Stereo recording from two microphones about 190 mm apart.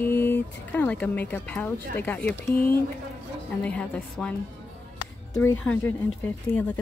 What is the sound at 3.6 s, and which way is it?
Speech, 5° left (ahead or behind).